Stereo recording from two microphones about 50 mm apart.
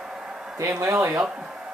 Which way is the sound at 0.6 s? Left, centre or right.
Right.